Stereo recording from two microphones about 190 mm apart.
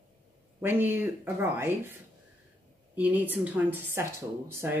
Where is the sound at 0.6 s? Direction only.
10° right (ahead or behind).